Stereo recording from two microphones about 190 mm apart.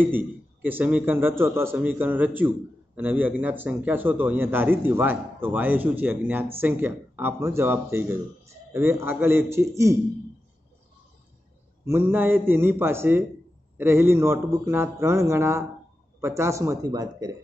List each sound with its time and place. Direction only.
0.0 s speech: 10° right (ahead or behind)
11.8 s speech: 10° right (ahead or behind)